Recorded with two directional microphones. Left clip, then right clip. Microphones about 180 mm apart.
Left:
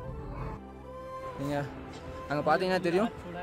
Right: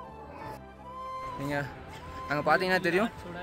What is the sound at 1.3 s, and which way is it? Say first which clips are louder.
Music: even; centre (ahead or behind).